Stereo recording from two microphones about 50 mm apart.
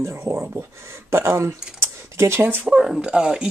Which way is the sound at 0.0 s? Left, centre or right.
Right.